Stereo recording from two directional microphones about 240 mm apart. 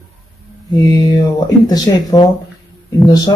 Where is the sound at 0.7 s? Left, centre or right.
Centre.